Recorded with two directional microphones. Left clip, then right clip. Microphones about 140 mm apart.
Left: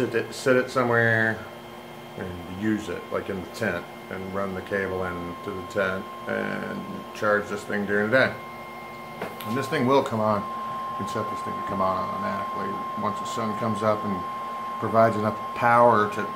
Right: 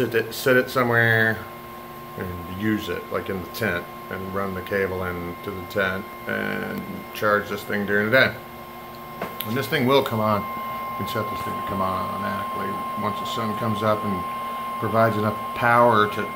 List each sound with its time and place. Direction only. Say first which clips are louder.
0.1 s speech: right 3 dB; 15° right (ahead or behind)
2.6 s speech: right 2 dB; 15° right (ahead or behind)
9.6 s speech: right 2 dB; 15° right (ahead or behind)
11.7 s speech: left 1 dB; 15° right (ahead or behind)